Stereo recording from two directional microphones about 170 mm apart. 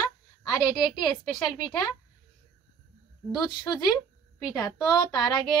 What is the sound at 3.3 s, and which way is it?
A woman's voice, 25° left (ahead or behind).